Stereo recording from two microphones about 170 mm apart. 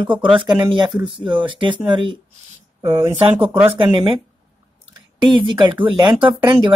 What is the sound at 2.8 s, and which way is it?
Speech, 15° right (ahead or behind).